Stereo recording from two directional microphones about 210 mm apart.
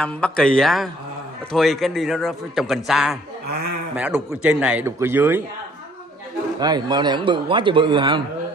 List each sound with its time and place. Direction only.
0.0 s a man's voice: 5° left (ahead or behind)
6.6 s a man's voice: 20° right (ahead or behind)